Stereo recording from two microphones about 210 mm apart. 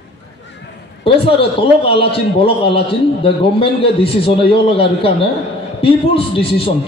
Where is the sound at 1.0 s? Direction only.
25° left (ahead or behind).